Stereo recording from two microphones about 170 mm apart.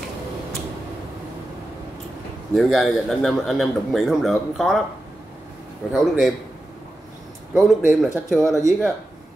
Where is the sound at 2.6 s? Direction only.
Centre (ahead or behind).